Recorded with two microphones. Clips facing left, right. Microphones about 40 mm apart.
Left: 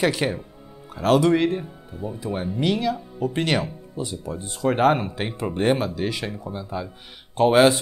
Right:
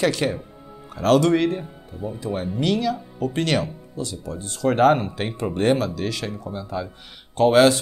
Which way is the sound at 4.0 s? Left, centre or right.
Left.